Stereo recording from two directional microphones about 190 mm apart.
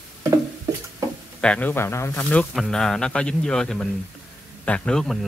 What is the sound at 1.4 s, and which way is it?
Speech, 5° left (ahead or behind).